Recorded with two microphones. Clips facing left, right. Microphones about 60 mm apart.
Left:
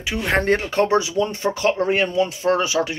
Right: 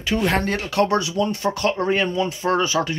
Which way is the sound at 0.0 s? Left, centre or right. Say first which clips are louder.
Right 4 dB; centre.